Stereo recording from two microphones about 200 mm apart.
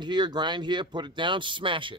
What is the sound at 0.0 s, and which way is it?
Speech, 20° right (ahead or behind).